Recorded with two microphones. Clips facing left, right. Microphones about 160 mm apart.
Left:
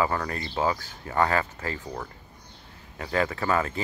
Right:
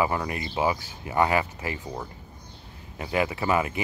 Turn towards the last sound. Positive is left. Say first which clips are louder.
# right 1 dB
turn(degrees=-15)  # may be behind; listen again after turning